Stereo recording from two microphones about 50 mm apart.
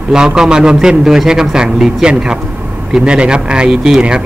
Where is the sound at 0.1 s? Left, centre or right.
Centre.